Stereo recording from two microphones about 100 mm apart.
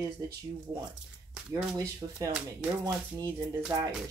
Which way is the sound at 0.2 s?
35° right (ahead or behind).